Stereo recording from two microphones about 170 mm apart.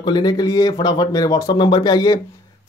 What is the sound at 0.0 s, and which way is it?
Speech, 25° left (ahead or behind).